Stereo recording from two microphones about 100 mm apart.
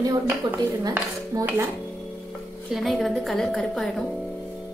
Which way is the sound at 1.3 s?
30° right (ahead or behind).